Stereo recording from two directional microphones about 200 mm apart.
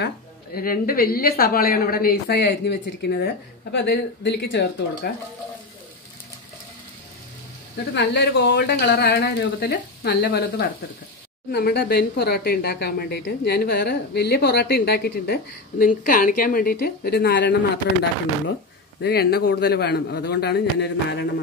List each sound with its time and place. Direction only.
0.6 s speech: 45° left (ahead or behind)
7.9 s speech: 60° left (ahead or behind)
18.9 s speech: 55° left (ahead or behind)